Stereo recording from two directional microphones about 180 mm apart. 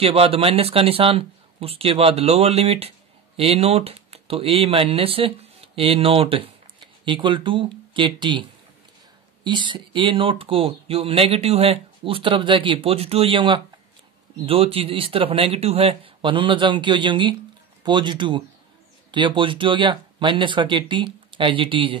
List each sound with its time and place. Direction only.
0.0 s speech: 30° right (ahead or behind)